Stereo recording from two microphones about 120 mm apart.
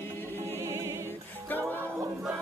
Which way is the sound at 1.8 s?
25° right (ahead or behind).